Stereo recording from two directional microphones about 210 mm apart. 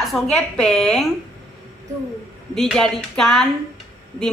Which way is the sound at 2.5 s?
Centre (ahead or behind).